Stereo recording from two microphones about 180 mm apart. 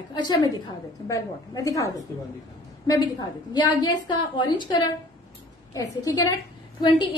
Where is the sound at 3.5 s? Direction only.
25° left (ahead or behind).